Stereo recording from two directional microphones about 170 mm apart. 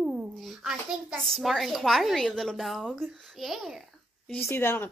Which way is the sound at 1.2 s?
Centre (ahead or behind).